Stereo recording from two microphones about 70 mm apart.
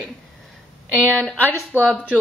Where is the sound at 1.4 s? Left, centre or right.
Right.